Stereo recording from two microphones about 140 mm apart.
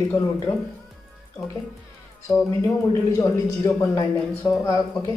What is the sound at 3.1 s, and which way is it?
Speech, 20° left (ahead or behind).